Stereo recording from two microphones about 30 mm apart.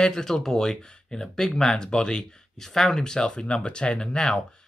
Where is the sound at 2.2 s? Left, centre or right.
Centre.